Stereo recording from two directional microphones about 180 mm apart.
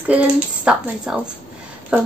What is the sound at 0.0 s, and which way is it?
Speech, 5° right (ahead or behind).